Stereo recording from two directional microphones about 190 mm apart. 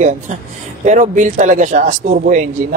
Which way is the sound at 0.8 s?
40° right (ahead or behind).